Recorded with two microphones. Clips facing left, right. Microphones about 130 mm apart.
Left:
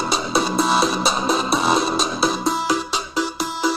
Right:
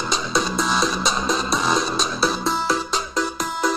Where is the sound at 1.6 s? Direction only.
30° left (ahead or behind).